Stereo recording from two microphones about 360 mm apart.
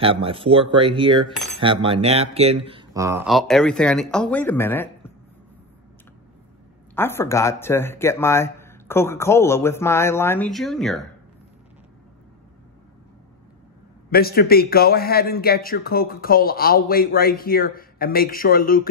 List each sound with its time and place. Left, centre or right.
0.0 s speech: centre
1.3 s speech: centre
1.6 s speech: centre
7.0 s speech: centre
14.1 s speech: left